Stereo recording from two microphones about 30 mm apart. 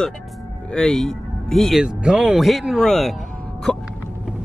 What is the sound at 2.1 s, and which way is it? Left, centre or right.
Speech, right.